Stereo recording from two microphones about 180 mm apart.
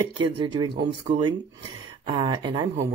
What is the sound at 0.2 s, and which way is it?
Speech, 25° right (ahead or behind).